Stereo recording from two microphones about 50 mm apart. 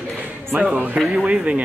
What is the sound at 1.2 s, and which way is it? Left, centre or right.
Speech, right.